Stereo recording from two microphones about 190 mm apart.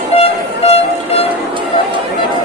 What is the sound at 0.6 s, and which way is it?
Train, 35° left (ahead or behind).